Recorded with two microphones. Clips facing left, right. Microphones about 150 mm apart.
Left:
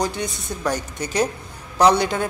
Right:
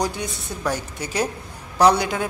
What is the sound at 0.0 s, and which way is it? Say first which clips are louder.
A man's voice: left 1 dB; 10° right (ahead or behind).